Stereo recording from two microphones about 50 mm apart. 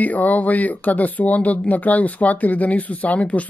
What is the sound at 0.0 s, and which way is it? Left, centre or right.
Speech, left.